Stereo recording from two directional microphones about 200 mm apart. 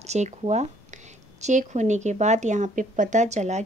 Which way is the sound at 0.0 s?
35° right (ahead or behind).